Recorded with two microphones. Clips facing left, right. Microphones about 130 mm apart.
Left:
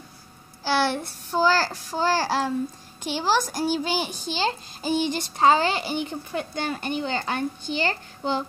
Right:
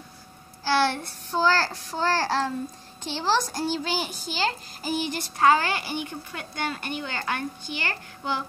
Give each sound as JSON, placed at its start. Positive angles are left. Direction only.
{"t": 0.7, "sound": "a child's voice", "side_deg": 15}